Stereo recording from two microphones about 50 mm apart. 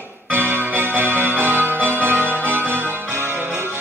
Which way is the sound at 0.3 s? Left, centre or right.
Right.